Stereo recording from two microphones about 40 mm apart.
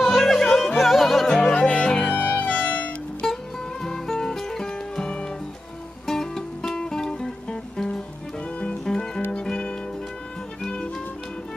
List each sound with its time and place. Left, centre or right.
0.0 s music: centre
1.5 s music: left
2.1 s music: left
2.4 s music: left
3.8 s music: centre